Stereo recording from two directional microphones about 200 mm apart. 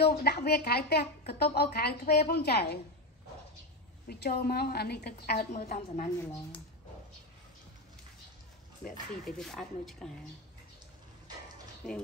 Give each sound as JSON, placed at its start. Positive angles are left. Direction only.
{"t": 0.0, "sound": "a woman's voice", "side_deg": 55}
{"t": 4.1, "sound": "a woman's voice", "side_deg": 50}
{"t": 9.4, "sound": "speech", "side_deg": 0}